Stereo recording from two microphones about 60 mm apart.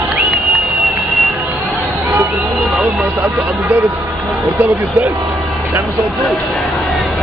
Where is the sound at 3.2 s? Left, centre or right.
Right.